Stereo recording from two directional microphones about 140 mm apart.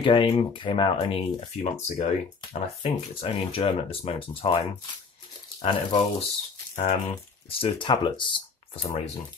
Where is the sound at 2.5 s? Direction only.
45° left (ahead or behind).